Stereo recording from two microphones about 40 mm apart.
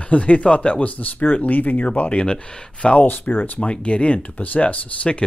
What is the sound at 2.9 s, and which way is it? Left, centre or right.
Speech, left.